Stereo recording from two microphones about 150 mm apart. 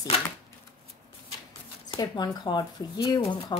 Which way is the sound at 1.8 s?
30° left (ahead or behind).